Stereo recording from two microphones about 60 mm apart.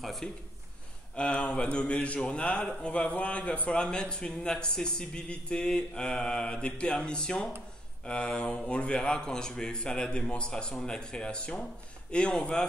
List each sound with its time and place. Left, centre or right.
0.0 s a man's voice: centre
1.1 s speech: centre